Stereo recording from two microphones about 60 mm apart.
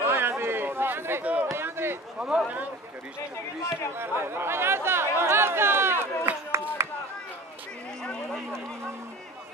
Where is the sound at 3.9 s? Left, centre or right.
Right.